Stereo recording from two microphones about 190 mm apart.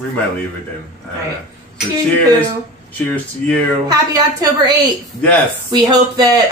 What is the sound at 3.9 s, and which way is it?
Speech, 20° right (ahead or behind).